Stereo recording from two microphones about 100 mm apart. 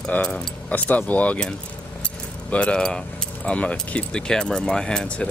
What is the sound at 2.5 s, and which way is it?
Speech, 10° left (ahead or behind).